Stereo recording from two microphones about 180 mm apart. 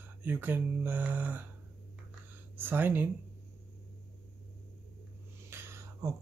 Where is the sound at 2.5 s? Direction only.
10° right (ahead or behind).